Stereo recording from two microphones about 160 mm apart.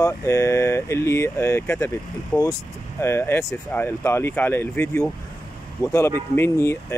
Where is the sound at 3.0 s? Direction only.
15° left (ahead or behind).